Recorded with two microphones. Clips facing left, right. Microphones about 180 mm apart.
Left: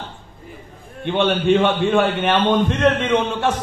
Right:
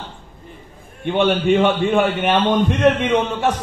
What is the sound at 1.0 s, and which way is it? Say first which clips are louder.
A man's voice: right 1 dB; 15° right (ahead or behind).